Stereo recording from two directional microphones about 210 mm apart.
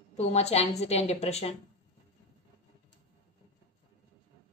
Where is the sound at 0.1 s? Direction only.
30° left (ahead or behind).